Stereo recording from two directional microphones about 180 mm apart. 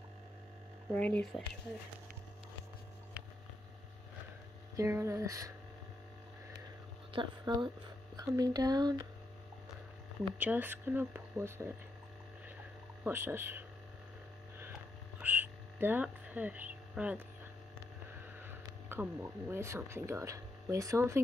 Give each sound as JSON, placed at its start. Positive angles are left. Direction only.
{"t": 0.9, "sound": "speech", "side_deg": 10}
{"t": 4.7, "sound": "speech", "side_deg": -15}
{"t": 7.1, "sound": "speech", "side_deg": -25}
{"t": 10.4, "sound": "speech", "side_deg": -10}
{"t": 13.0, "sound": "speech", "side_deg": -10}
{"t": 15.1, "sound": "frog", "side_deg": -10}
{"t": 18.4, "sound": "speech", "side_deg": -10}